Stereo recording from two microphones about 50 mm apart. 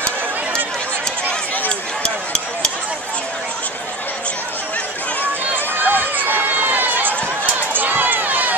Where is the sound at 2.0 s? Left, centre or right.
Centre.